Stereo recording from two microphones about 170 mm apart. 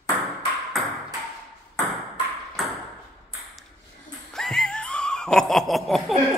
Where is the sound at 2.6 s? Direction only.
Centre (ahead or behind).